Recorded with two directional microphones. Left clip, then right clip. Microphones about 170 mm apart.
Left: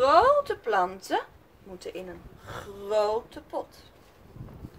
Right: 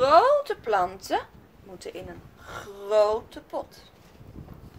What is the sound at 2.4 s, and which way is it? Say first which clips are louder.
Speech: right 1 dB; 25° right (ahead or behind).